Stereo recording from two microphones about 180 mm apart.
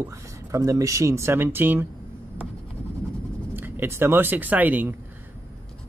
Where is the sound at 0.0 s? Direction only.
15° right (ahead or behind).